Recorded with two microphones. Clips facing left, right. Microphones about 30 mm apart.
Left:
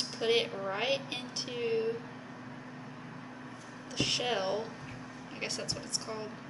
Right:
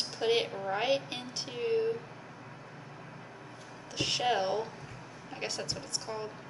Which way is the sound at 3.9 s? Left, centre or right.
Centre.